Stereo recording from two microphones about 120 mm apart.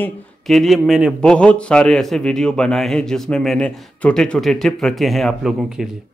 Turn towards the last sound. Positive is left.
turn(degrees=-5)  # may be behind; listen again after turning